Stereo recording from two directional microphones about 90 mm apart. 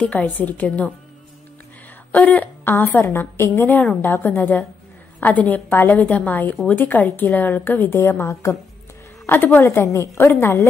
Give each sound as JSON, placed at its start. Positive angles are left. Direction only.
{"t": 0.0, "sound": "a woman's voice", "side_deg": 15}
{"t": 2.1, "sound": "a woman's voice", "side_deg": 20}
{"t": 9.2, "sound": "a woman's voice", "side_deg": 20}